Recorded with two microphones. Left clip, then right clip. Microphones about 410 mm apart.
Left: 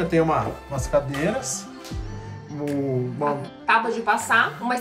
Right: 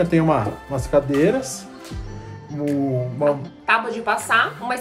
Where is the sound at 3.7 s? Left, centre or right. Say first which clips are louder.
Even; centre.